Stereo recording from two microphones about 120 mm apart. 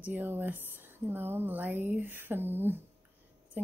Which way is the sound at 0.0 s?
15° right (ahead or behind).